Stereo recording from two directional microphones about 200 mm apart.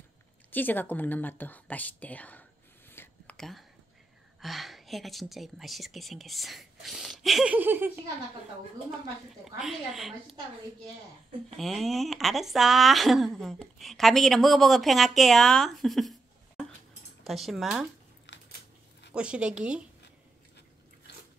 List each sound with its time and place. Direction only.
0.5 s a woman's voice: 10° left (ahead or behind)
2.9 s a sound: 10° left (ahead or behind)
4.4 s a woman's voice: centre (ahead or behind)
9.4 s a woman's voice: centre (ahead or behind)
11.5 s a woman's voice: centre (ahead or behind)
18.3 s biting: 65° left (ahead or behind)
19.1 s a woman's voice: 5° right (ahead or behind)